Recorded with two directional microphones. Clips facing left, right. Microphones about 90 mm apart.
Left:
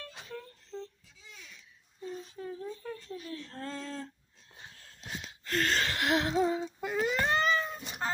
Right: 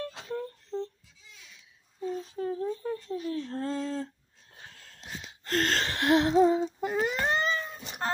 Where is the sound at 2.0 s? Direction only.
45° right (ahead or behind).